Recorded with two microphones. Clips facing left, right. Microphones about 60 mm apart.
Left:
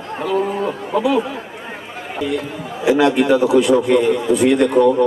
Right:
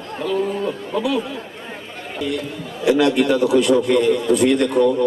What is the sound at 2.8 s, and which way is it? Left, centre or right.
A man's voice, centre.